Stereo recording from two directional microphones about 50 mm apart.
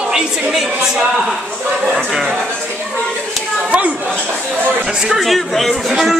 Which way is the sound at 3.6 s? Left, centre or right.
Right.